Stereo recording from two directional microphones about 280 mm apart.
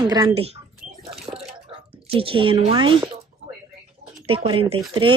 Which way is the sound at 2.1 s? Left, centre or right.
Centre.